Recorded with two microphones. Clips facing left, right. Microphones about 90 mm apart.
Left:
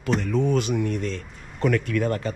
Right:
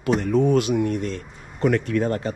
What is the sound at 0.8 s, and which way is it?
Speech, 45° right (ahead or behind).